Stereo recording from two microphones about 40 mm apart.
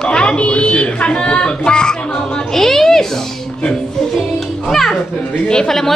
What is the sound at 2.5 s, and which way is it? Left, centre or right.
Speech, centre.